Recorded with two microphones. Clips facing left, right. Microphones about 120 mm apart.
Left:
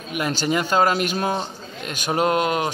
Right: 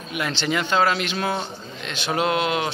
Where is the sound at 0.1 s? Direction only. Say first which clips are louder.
Left 2 dB; 45° left (ahead or behind).